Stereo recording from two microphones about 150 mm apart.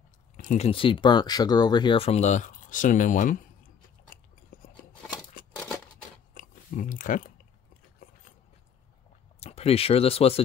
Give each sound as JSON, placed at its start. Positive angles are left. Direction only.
{"t": 0.4, "sound": "speech", "side_deg": 50}
{"t": 4.5, "sound": "scissors", "side_deg": 75}
{"t": 6.3, "sound": "chewing", "side_deg": 65}
{"t": 9.4, "sound": "speech", "side_deg": 45}